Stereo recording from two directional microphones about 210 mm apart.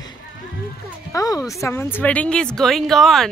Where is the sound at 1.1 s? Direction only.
15° left (ahead or behind).